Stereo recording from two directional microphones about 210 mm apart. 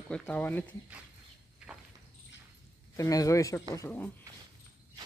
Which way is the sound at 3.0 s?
15° left (ahead or behind).